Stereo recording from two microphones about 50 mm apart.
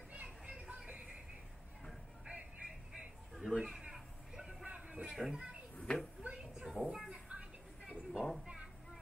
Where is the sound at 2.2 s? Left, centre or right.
Centre.